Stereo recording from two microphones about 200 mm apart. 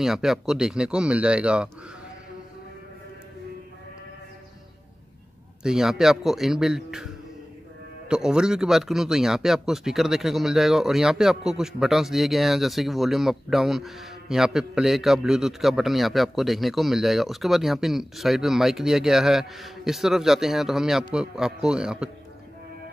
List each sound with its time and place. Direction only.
0.0 s speech: centre (ahead or behind)
5.6 s speech: 5° right (ahead or behind)
8.1 s speech: 5° right (ahead or behind)